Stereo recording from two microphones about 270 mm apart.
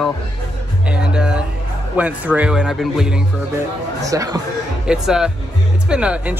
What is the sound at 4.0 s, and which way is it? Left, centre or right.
Speech, centre.